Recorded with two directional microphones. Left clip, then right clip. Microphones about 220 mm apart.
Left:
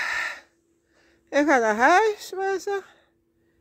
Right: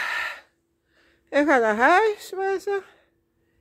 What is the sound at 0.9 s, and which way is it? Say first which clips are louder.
A woman's voice: right 1 dB; 10° left (ahead or behind).